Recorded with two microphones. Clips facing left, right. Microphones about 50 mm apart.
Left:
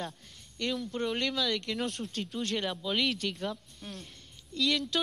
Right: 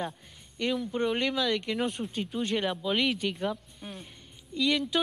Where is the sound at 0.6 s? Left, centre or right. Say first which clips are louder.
Right 4 dB; centre.